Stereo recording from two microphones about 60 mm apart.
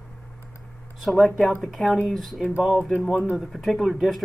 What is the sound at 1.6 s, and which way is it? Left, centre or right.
Speech, centre.